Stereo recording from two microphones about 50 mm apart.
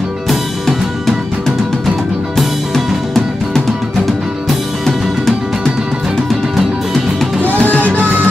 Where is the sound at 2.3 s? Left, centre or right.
Centre.